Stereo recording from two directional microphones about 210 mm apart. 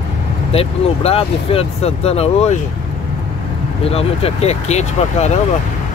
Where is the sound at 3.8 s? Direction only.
30° left (ahead or behind).